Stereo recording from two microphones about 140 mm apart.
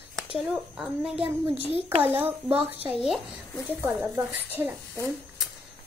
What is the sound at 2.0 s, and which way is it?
A woman's voice, 15° right (ahead or behind).